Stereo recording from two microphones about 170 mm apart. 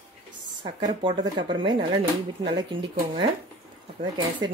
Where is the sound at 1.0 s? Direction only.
30° right (ahead or behind).